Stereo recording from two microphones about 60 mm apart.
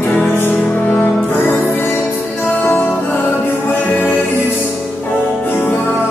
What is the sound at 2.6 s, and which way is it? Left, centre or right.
Music, left.